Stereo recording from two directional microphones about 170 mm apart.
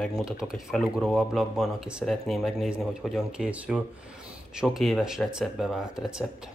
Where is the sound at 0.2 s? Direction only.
Centre (ahead or behind).